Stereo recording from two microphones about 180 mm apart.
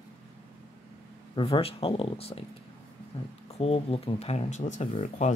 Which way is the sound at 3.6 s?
35° left (ahead or behind).